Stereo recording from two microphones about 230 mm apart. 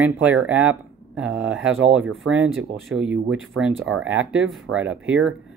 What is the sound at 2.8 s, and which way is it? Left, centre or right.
Speech, centre.